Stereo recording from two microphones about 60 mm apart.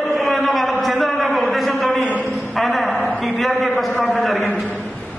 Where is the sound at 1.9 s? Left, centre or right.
Left.